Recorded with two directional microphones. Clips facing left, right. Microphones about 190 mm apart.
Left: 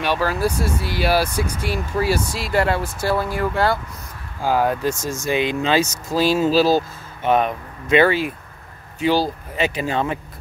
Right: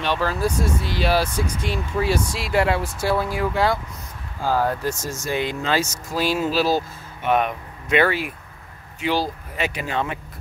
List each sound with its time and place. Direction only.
0.0 s speech: 10° left (ahead or behind)
4.5 s speech: 15° left (ahead or behind); by 10.0 s 35° left (ahead or behind)